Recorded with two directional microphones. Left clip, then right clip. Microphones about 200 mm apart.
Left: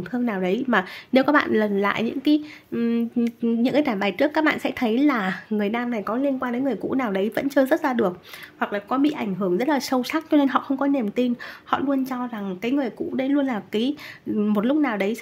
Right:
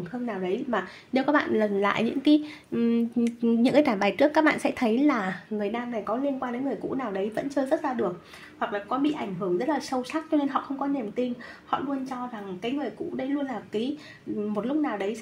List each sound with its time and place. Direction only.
0.3 s a woman's voice: 30° left (ahead or behind); by 5.4 s 15° left (ahead or behind)
5.6 s a woman's voice: 25° left (ahead or behind)